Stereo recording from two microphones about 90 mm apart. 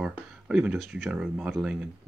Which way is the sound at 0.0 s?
10° right (ahead or behind).